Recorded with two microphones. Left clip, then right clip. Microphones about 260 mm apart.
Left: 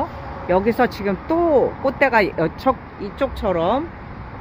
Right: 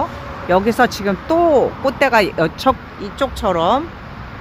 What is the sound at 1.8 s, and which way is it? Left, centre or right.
Speech, right.